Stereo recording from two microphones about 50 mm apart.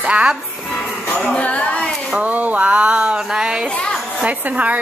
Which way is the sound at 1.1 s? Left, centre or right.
Left.